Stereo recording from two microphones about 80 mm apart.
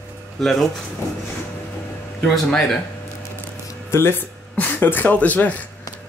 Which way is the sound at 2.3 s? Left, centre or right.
Centre.